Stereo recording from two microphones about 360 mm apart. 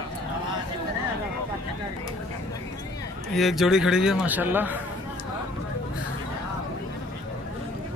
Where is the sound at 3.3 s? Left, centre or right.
Centre.